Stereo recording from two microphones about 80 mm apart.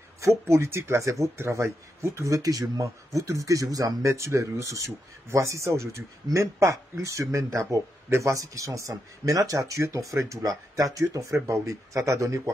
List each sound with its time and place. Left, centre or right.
0.2 s speech: right